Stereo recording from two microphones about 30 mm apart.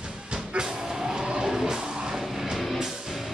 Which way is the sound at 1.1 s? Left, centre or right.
Right.